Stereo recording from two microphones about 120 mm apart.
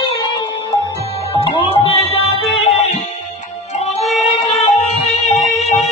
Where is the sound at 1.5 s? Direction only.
50° left (ahead or behind).